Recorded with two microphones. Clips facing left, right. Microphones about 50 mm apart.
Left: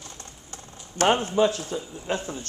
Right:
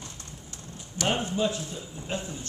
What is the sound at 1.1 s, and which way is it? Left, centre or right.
A man's voice, left.